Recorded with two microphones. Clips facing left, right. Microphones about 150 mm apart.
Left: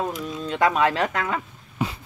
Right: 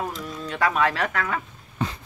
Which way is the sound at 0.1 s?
20° left (ahead or behind).